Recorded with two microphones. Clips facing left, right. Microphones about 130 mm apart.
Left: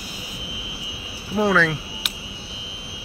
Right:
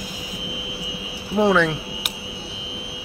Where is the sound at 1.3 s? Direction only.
20° right (ahead or behind).